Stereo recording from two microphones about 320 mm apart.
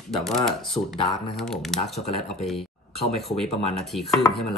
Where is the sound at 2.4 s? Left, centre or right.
Centre.